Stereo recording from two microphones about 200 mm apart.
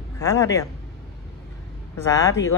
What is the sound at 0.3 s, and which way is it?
Speech, 15° left (ahead or behind).